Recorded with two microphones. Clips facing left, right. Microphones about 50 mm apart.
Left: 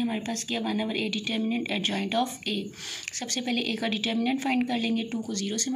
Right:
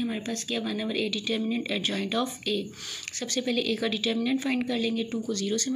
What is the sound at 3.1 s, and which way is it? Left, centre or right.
Speech, left.